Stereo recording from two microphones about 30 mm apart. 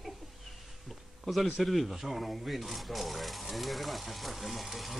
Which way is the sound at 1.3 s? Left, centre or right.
Centre.